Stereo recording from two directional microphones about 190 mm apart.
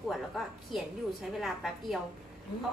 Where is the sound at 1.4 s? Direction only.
Centre (ahead or behind).